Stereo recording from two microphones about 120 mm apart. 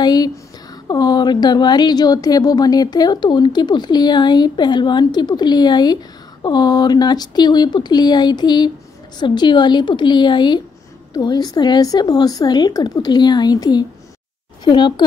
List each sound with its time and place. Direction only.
0.0 s a woman's voice: 35° left (ahead or behind)